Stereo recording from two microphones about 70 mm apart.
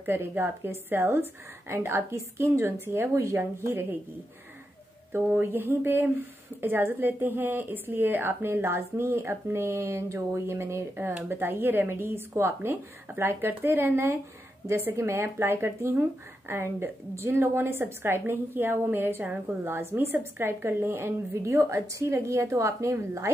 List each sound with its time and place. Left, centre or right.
0.0 s speech: right
5.1 s speech: right